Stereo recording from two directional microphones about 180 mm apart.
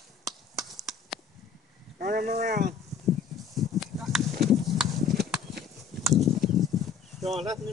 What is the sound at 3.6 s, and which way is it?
Horse, centre (ahead or behind).